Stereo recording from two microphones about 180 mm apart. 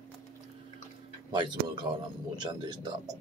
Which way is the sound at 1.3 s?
25° right (ahead or behind).